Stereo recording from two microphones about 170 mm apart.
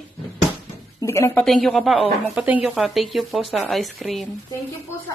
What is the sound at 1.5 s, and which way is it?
Speech, centre (ahead or behind).